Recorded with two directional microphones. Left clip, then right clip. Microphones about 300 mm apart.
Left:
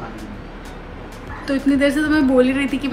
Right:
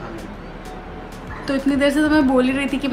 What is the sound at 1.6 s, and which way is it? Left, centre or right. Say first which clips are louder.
A woman's voice: even; centre.